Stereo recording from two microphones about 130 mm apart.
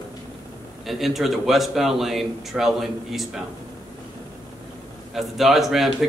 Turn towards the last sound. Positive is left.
turn(degrees=0)  # may be behind; listen again after turning